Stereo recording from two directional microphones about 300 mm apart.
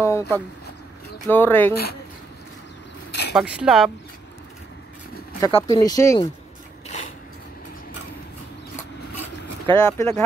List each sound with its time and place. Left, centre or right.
0.0 s a sound: centre
1.3 s speech: centre
3.1 s a sound: left
3.3 s speech: centre
5.4 s speech: centre
9.7 s speech: centre